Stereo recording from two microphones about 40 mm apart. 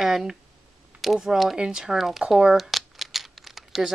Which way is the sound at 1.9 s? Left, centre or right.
Centre.